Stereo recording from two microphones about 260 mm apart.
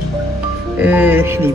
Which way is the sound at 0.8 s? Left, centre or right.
Centre.